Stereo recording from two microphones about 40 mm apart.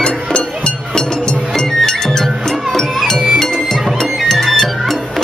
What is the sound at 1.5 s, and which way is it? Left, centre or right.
Music, centre.